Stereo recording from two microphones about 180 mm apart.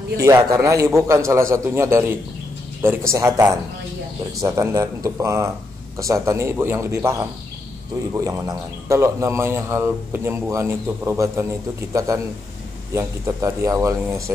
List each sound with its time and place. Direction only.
0.2 s a man's voice: 15° right (ahead or behind)